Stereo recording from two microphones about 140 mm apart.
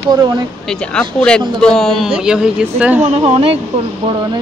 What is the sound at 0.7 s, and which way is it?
Speech, 5° left (ahead or behind).